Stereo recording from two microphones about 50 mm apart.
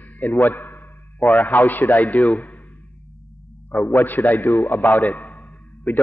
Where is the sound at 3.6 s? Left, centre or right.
Left.